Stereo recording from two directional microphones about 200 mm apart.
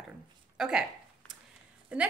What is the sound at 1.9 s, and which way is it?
Speech, 5° right (ahead or behind).